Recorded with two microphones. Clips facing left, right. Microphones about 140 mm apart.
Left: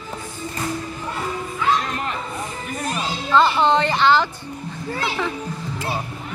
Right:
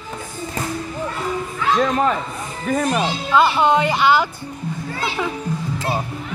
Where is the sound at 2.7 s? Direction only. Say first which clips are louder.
Right 10 dB; 90° right.